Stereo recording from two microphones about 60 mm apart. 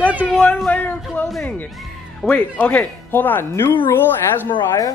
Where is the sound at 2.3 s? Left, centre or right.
Left.